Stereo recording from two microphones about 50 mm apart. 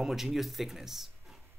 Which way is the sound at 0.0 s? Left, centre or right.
Centre.